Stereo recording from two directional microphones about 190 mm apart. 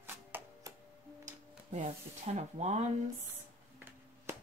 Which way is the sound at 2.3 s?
35° right (ahead or behind).